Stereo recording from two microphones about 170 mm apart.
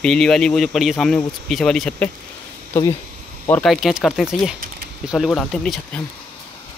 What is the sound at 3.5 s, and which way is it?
Speech, centre (ahead or behind).